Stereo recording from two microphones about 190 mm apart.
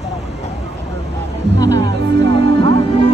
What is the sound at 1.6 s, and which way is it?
Music, 15° left (ahead or behind).